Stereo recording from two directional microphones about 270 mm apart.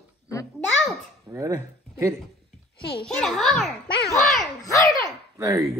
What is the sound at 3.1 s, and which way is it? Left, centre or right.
Speech, centre.